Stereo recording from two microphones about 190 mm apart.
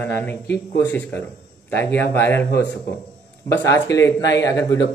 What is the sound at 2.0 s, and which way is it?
Speech, 10° left (ahead or behind).